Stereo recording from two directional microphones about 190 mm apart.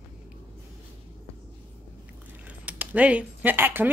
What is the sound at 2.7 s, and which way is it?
Speech, 5° right (ahead or behind).